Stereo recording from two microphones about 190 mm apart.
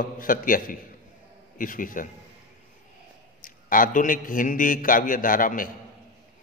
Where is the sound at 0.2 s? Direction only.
45° left (ahead or behind).